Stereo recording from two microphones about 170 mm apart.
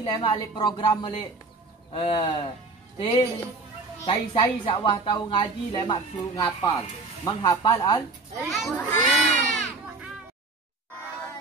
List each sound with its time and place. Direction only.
0.0 s speech: 25° left (ahead or behind)
4.0 s speech: 30° left (ahead or behind)
8.5 s a child's voice: centre (ahead or behind)